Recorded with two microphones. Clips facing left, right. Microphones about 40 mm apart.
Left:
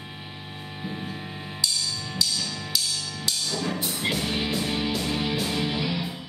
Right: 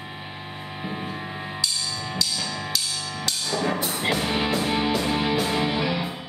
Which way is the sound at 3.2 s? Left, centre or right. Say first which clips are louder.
Right 4 dB; right.